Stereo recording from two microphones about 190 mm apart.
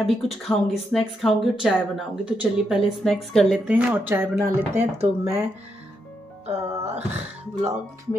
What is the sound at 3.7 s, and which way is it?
Speech, 10° right (ahead or behind).